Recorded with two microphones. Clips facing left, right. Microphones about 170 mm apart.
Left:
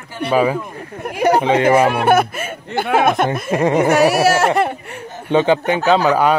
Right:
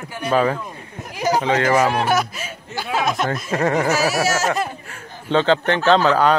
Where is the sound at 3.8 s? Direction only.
60° left (ahead or behind).